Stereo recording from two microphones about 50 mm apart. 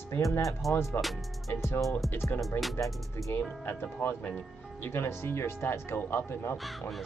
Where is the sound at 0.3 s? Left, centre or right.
Left.